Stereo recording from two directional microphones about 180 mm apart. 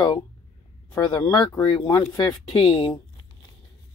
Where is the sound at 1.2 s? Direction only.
25° left (ahead or behind).